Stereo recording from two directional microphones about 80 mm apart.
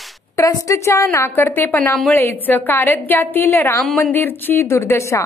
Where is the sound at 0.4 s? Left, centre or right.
Left.